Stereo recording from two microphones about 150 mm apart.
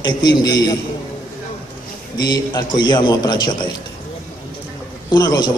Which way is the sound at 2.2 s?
30° left (ahead or behind).